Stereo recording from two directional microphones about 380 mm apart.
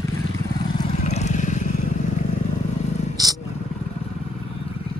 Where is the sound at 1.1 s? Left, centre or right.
Centre.